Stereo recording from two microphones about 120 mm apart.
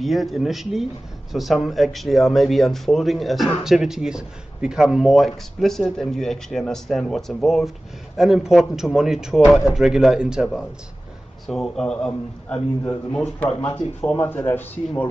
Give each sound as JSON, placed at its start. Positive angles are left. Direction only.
{"t": 0.0, "sound": "speech", "side_deg": 0}
{"t": 12.1, "sound": "a man's voice", "side_deg": 20}